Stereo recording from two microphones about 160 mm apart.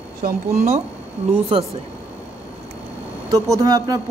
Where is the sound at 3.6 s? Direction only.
25° right (ahead or behind).